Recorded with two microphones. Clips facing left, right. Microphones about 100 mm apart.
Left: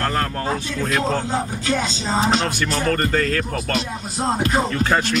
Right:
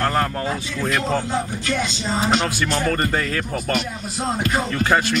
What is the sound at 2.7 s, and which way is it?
Speech, 15° right (ahead or behind).